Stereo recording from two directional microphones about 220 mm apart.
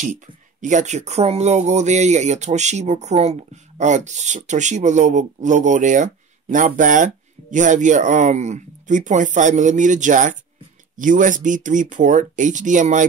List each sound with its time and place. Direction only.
0.0 s speech: 35° right (ahead or behind)